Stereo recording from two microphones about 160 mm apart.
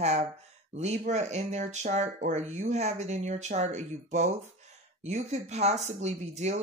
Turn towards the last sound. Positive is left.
turn(degrees=-45)  # may be behind; listen again after turning